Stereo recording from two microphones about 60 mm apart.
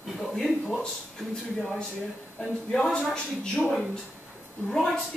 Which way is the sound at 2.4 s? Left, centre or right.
Centre.